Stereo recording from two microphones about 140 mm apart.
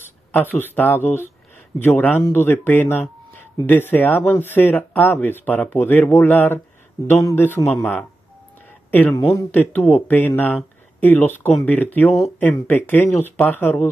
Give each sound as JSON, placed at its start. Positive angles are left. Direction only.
{"t": 0.0, "sound": "speech", "side_deg": 15}
{"t": 9.1, "sound": "speech", "side_deg": 20}